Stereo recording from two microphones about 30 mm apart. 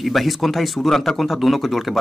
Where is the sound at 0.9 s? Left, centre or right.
Centre.